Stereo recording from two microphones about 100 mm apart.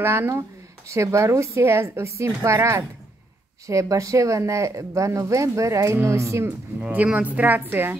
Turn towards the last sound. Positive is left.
turn(degrees=-20)  # may be behind; listen again after turning